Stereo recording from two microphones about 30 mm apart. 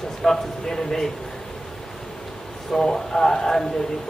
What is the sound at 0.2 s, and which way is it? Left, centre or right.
Speech, centre.